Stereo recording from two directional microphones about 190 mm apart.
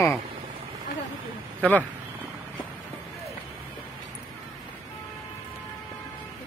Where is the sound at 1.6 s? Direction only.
10° left (ahead or behind).